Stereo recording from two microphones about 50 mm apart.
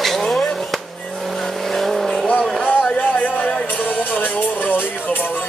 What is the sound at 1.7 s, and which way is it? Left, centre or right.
Vehicle, centre.